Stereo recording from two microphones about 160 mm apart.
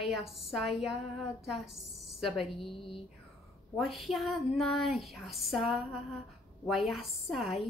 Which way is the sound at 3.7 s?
Centre (ahead or behind).